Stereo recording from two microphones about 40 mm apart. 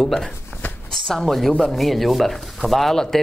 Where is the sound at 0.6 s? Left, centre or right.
Left.